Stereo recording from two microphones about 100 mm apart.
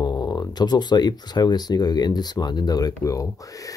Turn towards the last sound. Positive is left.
turn(degrees=35)  # may be behind; listen again after turning